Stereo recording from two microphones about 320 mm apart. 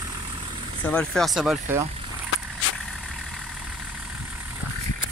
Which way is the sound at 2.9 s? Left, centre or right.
Centre.